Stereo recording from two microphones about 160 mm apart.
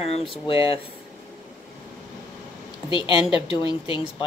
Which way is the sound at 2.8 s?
35° left (ahead or behind).